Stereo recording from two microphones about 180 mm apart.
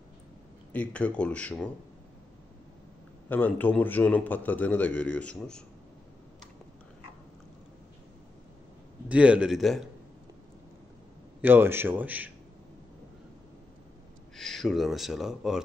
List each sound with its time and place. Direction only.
0.7 s a man's voice: 5° left (ahead or behind)
3.3 s a man's voice: 10° left (ahead or behind)
9.1 s speech: 5° right (ahead or behind)
11.4 s speech: 10° right (ahead or behind)
14.3 s speech: centre (ahead or behind)